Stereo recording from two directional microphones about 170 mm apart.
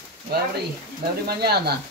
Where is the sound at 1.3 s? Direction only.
70° right (ahead or behind).